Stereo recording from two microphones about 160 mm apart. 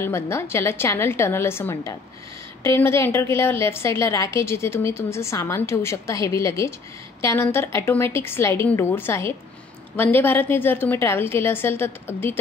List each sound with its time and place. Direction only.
0.0 s a woman's voice: 15° left (ahead or behind)